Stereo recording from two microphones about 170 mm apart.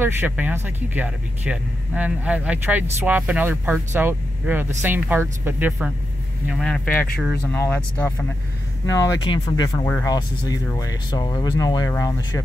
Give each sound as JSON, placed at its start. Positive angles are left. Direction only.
{"t": 0.0, "sound": "speech", "side_deg": -10}
{"t": 7.5, "sound": "speech", "side_deg": 15}
{"t": 9.8, "sound": "speech", "side_deg": 10}